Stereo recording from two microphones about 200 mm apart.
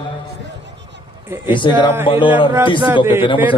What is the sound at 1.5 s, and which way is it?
Speech, 25° left (ahead or behind).